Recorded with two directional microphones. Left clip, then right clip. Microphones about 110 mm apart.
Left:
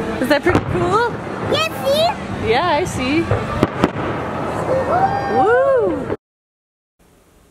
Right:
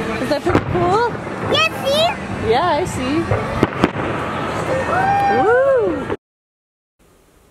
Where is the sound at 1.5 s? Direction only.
5° left (ahead or behind).